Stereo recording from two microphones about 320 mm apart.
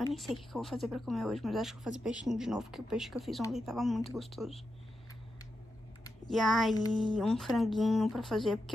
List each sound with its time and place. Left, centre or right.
0.1 s speech: centre
6.2 s speech: centre